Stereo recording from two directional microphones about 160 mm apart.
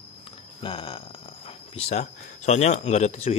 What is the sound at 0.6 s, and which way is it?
Speech, 30° left (ahead or behind).